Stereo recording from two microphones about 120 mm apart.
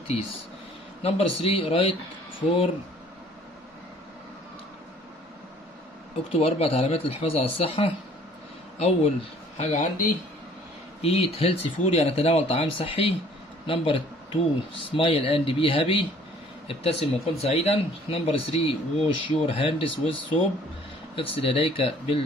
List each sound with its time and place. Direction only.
1.0 s speech: 55° left (ahead or behind)
6.3 s speech: 55° left (ahead or behind)
9.6 s speech: 80° left
11.0 s speech: 55° left (ahead or behind)